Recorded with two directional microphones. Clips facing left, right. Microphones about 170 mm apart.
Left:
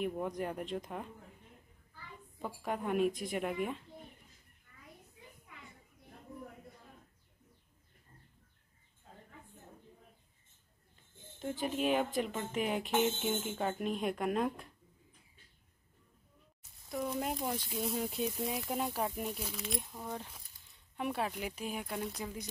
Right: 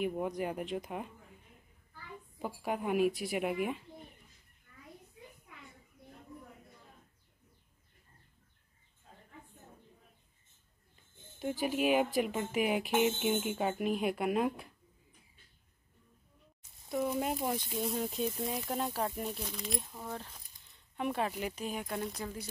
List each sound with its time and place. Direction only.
0.0 s speech: 5° right (ahead or behind)
2.3 s speech: 5° right (ahead or behind)
11.3 s speech: 10° right (ahead or behind)
16.9 s speech: 5° right (ahead or behind)
18.0 s speech: 10° left (ahead or behind)
18.4 s speech: centre (ahead or behind)
20.1 s speech: 10° left (ahead or behind)